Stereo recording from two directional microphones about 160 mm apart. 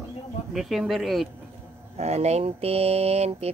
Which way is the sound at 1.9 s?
40° right (ahead or behind).